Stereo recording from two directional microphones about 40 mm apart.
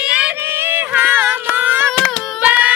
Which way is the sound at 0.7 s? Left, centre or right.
Right.